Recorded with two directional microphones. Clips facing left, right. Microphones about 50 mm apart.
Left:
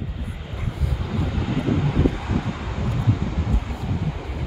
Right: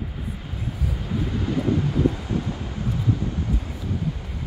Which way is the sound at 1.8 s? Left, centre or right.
Left.